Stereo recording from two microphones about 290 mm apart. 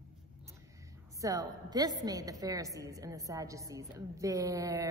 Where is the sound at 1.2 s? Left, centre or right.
Centre.